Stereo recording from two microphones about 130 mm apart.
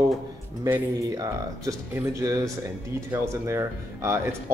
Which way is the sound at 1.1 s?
25° right (ahead or behind).